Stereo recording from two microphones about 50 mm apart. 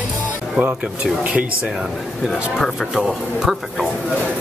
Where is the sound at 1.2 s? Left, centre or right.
Right.